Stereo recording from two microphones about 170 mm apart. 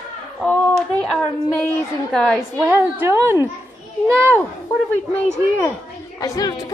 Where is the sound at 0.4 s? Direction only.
5° left (ahead or behind).